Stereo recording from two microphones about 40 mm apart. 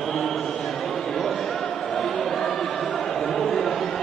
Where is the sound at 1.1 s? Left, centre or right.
Centre.